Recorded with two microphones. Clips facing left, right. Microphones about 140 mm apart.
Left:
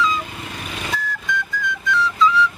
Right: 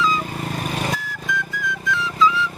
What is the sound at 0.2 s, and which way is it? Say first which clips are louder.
Vehicle: right 5 dB; 40° right (ahead or behind).